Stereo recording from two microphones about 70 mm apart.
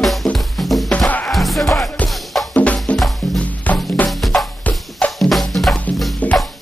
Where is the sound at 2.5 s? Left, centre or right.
Centre.